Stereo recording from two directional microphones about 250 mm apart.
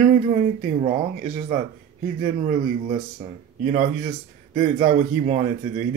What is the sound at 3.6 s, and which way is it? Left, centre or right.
A man's voice, right.